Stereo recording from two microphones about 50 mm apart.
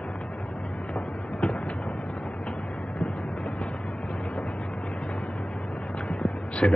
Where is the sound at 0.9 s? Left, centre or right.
Centre.